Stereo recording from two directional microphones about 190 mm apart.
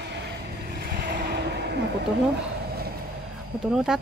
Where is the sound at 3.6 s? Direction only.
5° right (ahead or behind).